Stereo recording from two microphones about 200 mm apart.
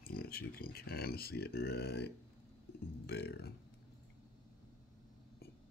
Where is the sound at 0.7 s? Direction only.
50° left (ahead or behind).